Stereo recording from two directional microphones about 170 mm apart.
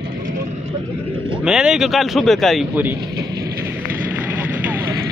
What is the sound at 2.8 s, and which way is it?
Speech, 10° right (ahead or behind).